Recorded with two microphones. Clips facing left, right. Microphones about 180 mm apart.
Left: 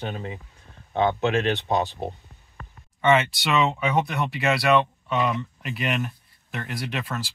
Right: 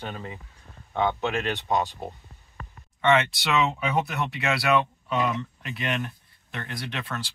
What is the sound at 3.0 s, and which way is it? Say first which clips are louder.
Speech: left 2 dB; centre (ahead or behind).